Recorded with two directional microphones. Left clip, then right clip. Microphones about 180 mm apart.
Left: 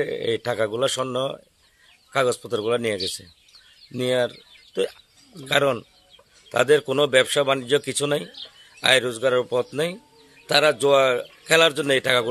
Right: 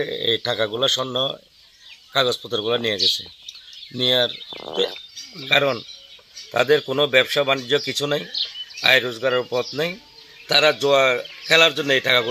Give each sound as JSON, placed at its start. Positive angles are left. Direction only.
{"t": 0.0, "sound": "a man's voice", "side_deg": 10}
{"t": 5.5, "sound": "a man's voice", "side_deg": 20}